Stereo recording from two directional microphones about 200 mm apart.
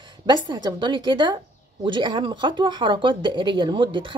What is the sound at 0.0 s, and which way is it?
A woman's voice, 20° right (ahead or behind).